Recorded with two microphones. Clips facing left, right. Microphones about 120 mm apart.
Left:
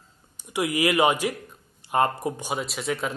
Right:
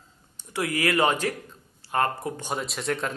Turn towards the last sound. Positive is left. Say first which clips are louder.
# left 1 dB
turn(degrees=0)  # may be behind; listen again after turning